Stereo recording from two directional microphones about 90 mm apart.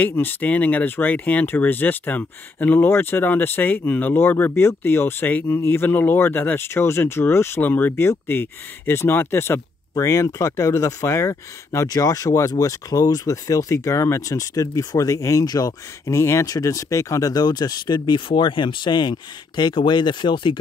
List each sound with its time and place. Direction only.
0.0 s speech: 20° left (ahead or behind); by 20.5 s 65° left (ahead or behind)